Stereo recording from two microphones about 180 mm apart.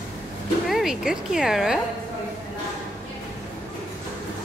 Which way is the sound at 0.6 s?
Centre (ahead or behind).